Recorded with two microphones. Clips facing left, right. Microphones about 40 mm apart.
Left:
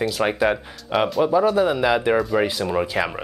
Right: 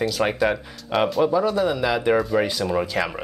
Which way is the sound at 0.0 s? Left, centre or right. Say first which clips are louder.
Left 1 dB; centre.